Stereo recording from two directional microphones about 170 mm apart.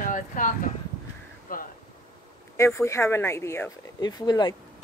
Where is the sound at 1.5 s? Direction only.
55° left (ahead or behind).